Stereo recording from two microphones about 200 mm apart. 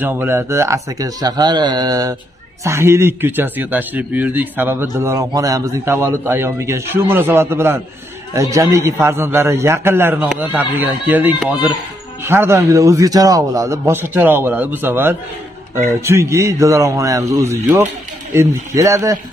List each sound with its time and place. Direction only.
0.0 s a man's voice: 10° right (ahead or behind)